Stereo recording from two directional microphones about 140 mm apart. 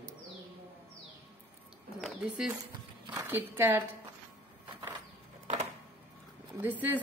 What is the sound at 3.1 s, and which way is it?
Speech, 15° right (ahead or behind).